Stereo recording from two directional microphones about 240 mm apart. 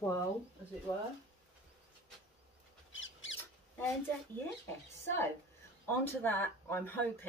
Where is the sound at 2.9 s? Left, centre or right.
Left.